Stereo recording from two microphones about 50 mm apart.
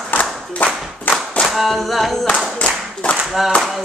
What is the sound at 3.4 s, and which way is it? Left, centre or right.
Speech, centre.